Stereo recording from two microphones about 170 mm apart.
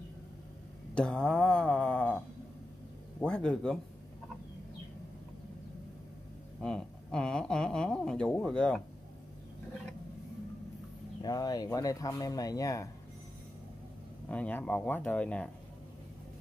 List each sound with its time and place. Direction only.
0.9 s a sound: 5° left (ahead or behind)
3.2 s speech: 5° left (ahead or behind)
6.6 s speech: 5° left (ahead or behind)
11.2 s speech: 20° left (ahead or behind)
14.3 s speech: 5° left (ahead or behind)